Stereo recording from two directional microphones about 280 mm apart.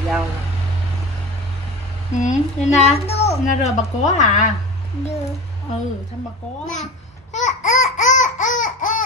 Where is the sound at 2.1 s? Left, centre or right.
Left.